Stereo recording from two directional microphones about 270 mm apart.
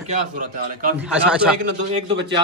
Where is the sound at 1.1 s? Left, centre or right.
Centre.